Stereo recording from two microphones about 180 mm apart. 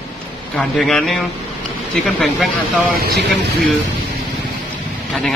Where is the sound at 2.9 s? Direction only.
60° right (ahead or behind).